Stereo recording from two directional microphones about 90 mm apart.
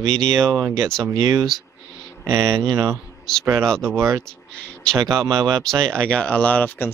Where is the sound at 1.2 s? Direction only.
45° right (ahead or behind).